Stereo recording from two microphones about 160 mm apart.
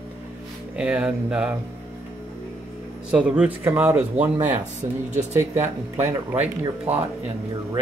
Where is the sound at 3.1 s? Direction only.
5° right (ahead or behind).